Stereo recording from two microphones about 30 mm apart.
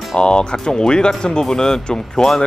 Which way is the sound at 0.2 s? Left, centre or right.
Left.